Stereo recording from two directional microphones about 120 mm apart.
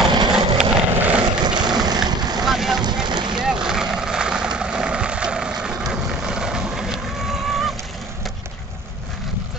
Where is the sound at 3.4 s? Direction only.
5° right (ahead or behind).